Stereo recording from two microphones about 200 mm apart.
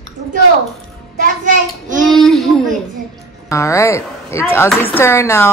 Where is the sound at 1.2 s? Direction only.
40° right (ahead or behind).